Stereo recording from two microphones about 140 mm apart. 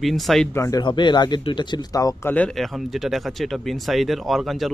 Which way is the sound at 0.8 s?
35° left (ahead or behind).